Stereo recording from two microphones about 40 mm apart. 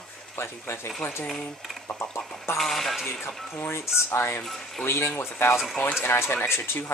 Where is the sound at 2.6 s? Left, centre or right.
Centre.